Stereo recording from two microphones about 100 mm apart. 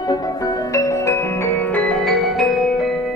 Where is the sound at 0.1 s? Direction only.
35° left (ahead or behind); by 2.0 s 15° left (ahead or behind).